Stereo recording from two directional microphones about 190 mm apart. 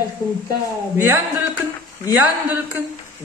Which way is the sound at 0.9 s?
15° right (ahead or behind).